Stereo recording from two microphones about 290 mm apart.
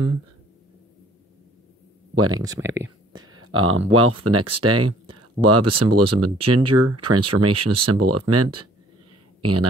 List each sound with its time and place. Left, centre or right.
2.1 s speech: right
2.4 s speech: centre
3.1 s speech: right